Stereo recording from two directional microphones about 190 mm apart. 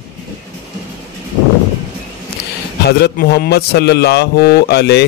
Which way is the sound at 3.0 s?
55° left (ahead or behind).